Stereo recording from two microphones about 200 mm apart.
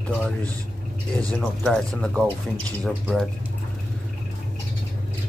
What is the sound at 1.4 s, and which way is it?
Speech, centre (ahead or behind).